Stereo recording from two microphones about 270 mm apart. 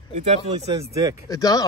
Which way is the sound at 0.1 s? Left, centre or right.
Right.